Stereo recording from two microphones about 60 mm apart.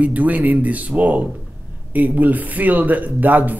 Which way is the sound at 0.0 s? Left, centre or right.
Right.